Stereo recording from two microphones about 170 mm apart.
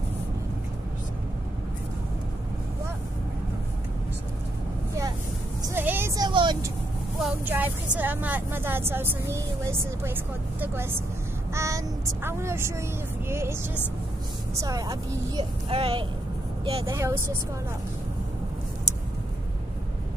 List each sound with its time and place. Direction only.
5.7 s vehicle: 15° right (ahead or behind)
7.2 s a woman's voice: 5° right (ahead or behind); by 16.1 s 35° right (ahead or behind)
16.8 s speech: 15° right (ahead or behind)